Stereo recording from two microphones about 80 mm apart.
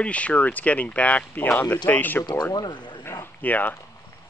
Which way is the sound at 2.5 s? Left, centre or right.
Left.